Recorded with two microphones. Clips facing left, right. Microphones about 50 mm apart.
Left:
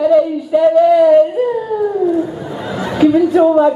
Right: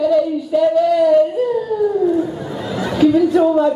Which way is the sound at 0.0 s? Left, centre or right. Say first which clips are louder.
Left 4 dB; centre.